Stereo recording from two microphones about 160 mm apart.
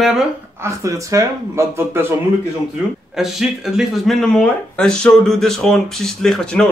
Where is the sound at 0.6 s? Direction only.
20° right (ahead or behind).